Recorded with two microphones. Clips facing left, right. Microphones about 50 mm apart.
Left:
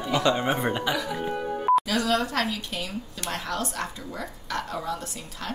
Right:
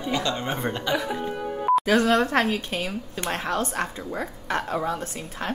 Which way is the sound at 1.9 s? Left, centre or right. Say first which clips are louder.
Right 5 dB; right.